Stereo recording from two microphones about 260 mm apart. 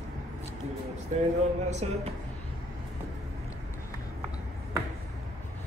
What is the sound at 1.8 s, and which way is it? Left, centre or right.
Speech, right.